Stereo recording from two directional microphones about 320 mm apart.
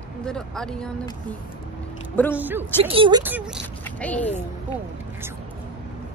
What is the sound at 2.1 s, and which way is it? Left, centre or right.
Speech, centre.